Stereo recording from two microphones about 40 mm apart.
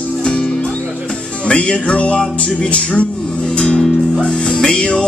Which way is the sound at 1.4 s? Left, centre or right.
Left.